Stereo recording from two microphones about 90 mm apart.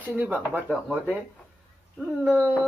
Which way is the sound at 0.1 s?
15° right (ahead or behind).